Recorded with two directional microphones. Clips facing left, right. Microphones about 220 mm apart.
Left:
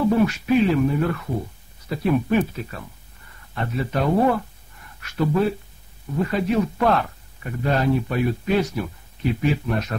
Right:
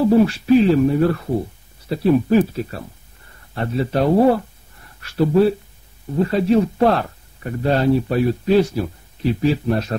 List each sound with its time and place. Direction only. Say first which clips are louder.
0.0 s speech: right 5 dB; 35° right (ahead or behind)